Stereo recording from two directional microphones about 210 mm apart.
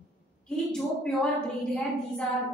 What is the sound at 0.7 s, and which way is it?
A woman's voice, 5° left (ahead or behind).